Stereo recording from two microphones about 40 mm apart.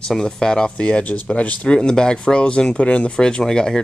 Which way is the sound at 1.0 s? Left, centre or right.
Left.